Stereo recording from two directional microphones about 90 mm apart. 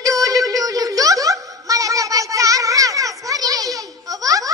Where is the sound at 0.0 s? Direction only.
40° right (ahead or behind).